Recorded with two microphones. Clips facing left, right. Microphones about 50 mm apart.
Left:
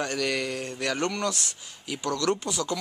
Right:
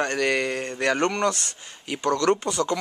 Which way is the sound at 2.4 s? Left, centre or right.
Centre.